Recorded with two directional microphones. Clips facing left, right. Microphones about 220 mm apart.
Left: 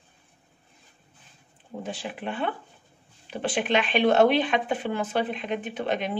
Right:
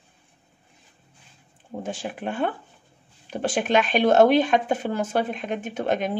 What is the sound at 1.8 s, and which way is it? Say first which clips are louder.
Speech: right 3 dB; 45° right (ahead or behind).